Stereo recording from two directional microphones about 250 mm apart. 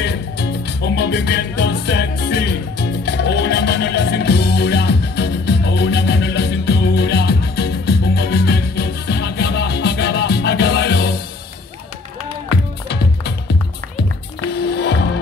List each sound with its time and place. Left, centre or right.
0.0 s music: left
12.8 s music: left
14.5 s music: left